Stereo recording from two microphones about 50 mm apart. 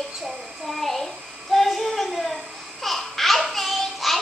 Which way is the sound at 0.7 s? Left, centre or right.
Centre.